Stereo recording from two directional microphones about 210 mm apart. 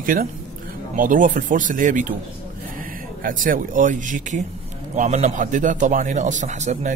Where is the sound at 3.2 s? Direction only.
40° right (ahead or behind).